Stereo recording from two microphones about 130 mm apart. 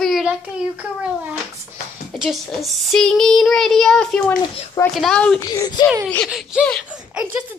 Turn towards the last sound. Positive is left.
turn(degrees=-10)  # may be behind; listen again after turning